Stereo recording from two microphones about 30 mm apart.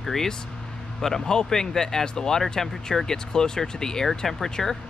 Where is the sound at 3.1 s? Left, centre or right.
Left.